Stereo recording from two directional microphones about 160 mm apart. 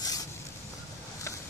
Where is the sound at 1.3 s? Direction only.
15° left (ahead or behind).